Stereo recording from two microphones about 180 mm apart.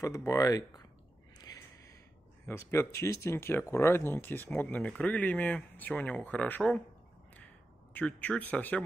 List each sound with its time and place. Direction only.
0.0 s speech: 15° left (ahead or behind)
2.4 s speech: 15° left (ahead or behind)
7.3 s a sound: 10° left (ahead or behind)